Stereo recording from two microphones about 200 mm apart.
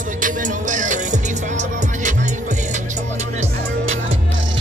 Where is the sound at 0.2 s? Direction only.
40° right (ahead or behind).